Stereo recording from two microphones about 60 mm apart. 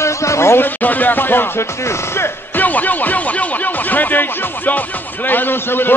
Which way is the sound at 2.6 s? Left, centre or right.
Left.